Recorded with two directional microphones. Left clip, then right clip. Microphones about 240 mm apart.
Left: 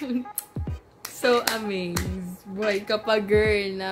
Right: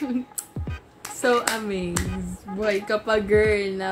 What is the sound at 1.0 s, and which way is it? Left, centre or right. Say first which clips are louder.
Speech: even; centre.